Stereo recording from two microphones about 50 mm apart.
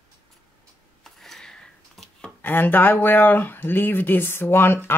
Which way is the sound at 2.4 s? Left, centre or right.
Left.